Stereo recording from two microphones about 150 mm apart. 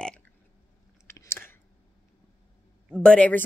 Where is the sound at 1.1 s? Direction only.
15° left (ahead or behind).